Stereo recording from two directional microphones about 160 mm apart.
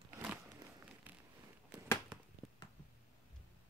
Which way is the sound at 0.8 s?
10° right (ahead or behind).